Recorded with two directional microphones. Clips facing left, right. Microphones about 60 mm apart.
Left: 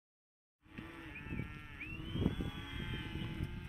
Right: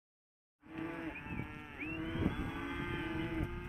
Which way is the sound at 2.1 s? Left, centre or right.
Right.